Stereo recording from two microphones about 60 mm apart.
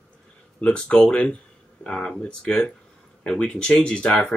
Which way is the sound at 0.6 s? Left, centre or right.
Centre.